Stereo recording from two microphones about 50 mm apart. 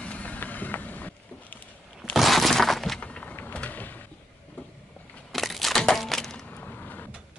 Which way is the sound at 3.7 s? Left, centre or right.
Left.